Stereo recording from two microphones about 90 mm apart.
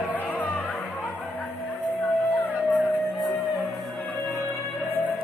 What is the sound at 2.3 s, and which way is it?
Music, 15° right (ahead or behind).